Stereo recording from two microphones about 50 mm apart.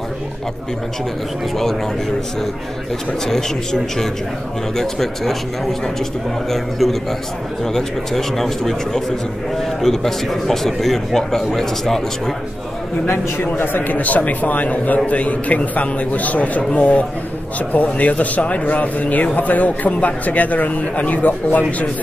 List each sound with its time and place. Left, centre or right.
3.3 s a man's voice: centre
13.6 s a man's voice: left